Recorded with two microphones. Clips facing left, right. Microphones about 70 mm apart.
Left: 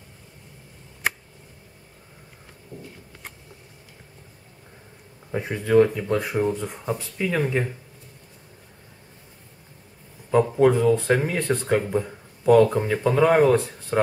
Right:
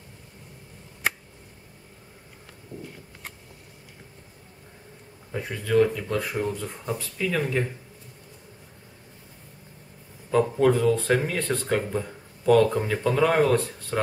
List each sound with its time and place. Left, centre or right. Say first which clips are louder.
2.7 s a sound: right 1 dB; left
5.3 s speech: left 4 dB; left
10.5 s speech: left 3 dB; centre